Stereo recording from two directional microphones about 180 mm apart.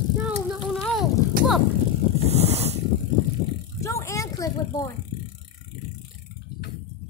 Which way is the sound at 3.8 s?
15° left (ahead or behind).